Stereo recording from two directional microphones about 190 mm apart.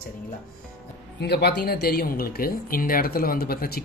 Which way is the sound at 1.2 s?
60° left (ahead or behind).